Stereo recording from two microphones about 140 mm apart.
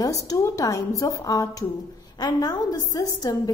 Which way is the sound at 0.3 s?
25° left (ahead or behind).